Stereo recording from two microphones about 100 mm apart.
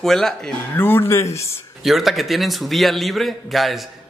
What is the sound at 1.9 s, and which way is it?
Speech, centre (ahead or behind).